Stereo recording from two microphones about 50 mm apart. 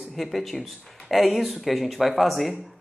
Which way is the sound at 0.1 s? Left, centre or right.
Centre.